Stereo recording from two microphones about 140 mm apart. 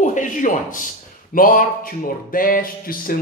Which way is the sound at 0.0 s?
65° left (ahead or behind).